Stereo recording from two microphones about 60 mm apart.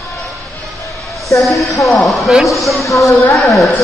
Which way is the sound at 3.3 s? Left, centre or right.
Centre.